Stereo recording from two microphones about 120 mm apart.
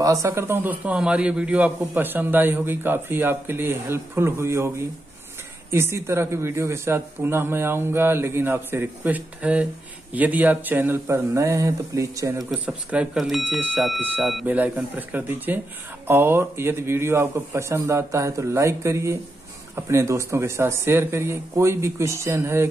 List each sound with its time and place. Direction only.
0.0 s a man's voice: 25° right (ahead or behind)
12.4 s a man's voice: 10° right (ahead or behind)